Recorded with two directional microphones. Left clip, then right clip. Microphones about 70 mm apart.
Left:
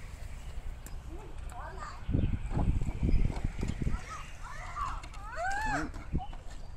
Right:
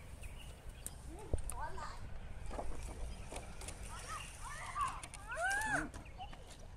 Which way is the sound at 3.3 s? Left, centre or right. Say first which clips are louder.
Left 8 dB; left.